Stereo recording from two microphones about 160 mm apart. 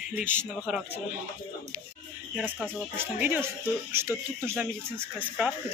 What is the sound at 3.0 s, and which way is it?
Speech, 10° right (ahead or behind).